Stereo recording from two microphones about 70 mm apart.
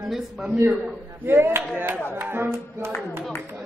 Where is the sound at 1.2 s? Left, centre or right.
Right.